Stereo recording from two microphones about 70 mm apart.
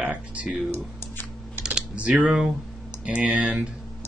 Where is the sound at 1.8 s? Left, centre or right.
Right.